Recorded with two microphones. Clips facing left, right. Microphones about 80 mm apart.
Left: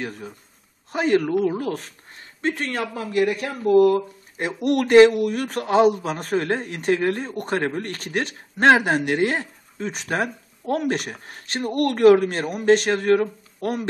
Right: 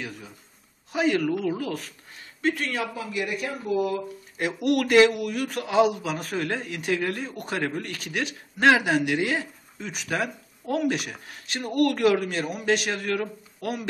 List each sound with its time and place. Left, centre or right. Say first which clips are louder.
0.0 s speech: left 6 dB; left
1.2 s a man's voice: left 4 dB; left
4.4 s a man's voice: left 2 dB; left